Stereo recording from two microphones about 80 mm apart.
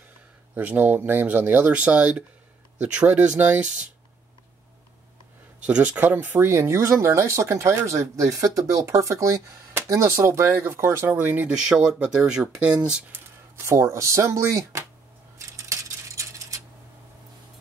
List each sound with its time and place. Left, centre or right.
0.6 s speech: right
5.7 s speech: centre
11.5 s speech: centre
13.6 s speech: right
15.3 s coin: right